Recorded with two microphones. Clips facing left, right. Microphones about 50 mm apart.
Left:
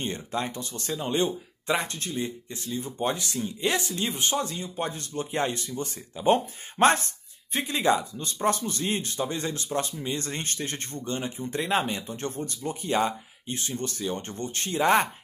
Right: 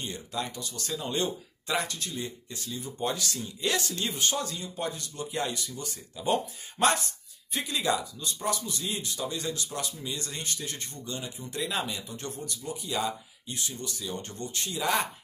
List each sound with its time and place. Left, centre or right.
0.0 s speech: left